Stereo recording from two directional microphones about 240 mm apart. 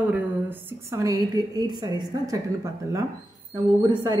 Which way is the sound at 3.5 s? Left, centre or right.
Centre.